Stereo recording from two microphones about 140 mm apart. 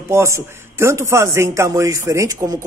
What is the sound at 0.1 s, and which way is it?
A man's voice, 20° right (ahead or behind).